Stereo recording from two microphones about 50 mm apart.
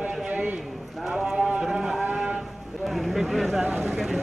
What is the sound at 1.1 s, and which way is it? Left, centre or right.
Speech, centre.